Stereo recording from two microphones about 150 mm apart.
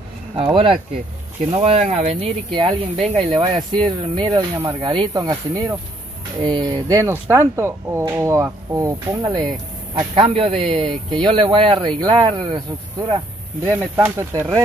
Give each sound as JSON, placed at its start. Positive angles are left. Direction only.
{"t": 0.4, "sound": "speech", "side_deg": -35}
{"t": 13.7, "sound": "speech", "side_deg": -15}